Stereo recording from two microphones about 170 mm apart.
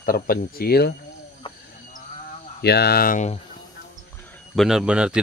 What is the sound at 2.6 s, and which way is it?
Speech, 70° left (ahead or behind).